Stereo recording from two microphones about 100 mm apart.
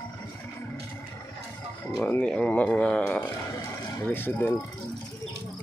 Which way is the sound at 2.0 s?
10° left (ahead or behind).